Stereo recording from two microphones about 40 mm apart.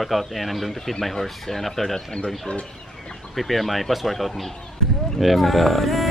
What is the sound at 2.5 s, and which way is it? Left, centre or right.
Speech, left.